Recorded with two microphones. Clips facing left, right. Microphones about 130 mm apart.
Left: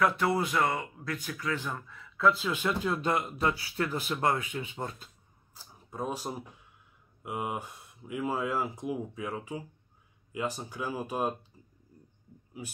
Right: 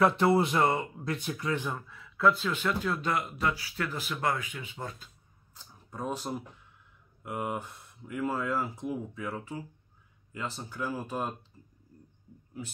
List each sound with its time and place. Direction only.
0.0 s speech: 25° right (ahead or behind)
1.8 s speech: 5° right (ahead or behind)
2.5 s speech: 15° left (ahead or behind)
5.6 s speech: 10° left (ahead or behind)
11.6 s a sound: 10° left (ahead or behind)